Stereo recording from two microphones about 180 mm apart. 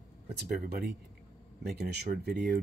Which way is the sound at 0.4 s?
60° right (ahead or behind).